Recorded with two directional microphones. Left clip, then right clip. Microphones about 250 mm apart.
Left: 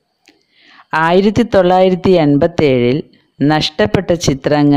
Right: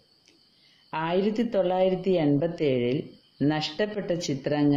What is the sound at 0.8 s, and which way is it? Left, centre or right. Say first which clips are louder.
A woman's voice: left 15 dB; left.